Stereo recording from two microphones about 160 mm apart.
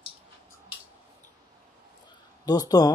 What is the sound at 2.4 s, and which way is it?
Speech, 25° left (ahead or behind).